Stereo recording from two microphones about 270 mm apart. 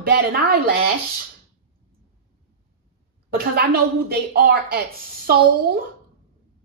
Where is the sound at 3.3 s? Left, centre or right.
Right.